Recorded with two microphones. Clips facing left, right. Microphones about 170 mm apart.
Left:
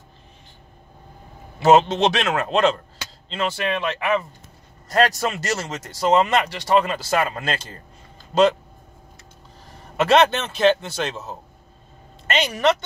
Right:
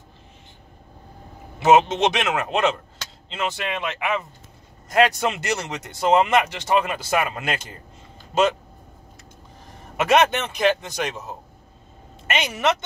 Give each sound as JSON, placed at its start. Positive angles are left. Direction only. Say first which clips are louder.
{"t": 1.7, "sound": "speech", "louder": "left 1 dB", "side_deg": -20}
{"t": 9.9, "sound": "a man's voice", "louder": "left 2 dB", "side_deg": -15}